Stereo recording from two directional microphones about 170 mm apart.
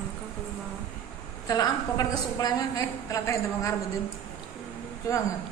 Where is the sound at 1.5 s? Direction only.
20° left (ahead or behind).